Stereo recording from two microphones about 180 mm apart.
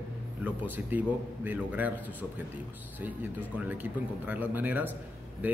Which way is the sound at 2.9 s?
10° right (ahead or behind).